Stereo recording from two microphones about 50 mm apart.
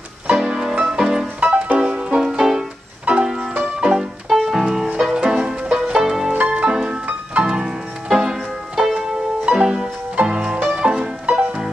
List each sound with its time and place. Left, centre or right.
0.3 s music: centre
1.2 s music: right